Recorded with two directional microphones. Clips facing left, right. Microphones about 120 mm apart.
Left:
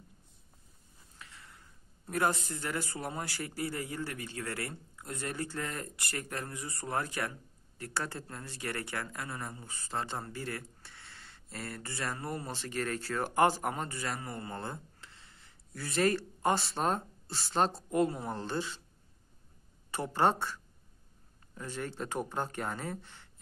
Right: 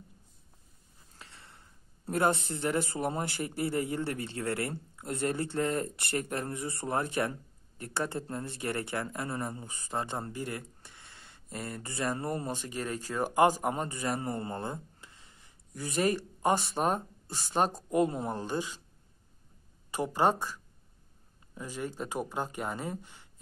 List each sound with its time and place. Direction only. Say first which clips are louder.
1.1 s a sound: right 1 dB; 30° right (ahead or behind)
2.0 s speech: right 3 dB; 25° right (ahead or behind)
14.6 s speech: right 3 dB; 15° right (ahead or behind)
19.9 s speech: right 1 dB; 10° right (ahead or behind)
21.5 s speech: right 1 dB; 10° right (ahead or behind)